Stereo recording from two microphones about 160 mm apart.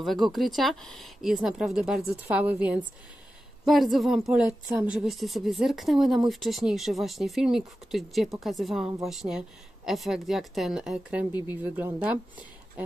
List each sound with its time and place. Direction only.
0.3 s speech: centre (ahead or behind)